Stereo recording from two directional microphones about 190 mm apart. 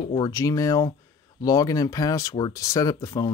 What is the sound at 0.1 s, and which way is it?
Speech, 20° left (ahead or behind).